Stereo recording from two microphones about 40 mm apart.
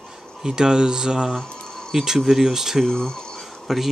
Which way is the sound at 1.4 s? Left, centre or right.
Centre.